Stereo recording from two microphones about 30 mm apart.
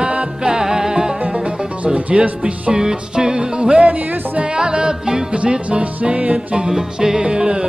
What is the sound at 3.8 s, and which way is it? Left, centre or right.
Music, right.